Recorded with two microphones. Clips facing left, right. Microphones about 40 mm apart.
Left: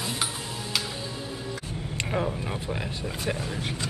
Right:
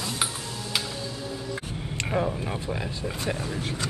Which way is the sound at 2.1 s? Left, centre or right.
Centre.